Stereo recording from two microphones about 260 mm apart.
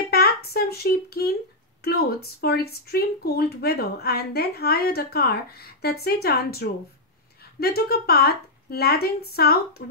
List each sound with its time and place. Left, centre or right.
0.1 s speech: left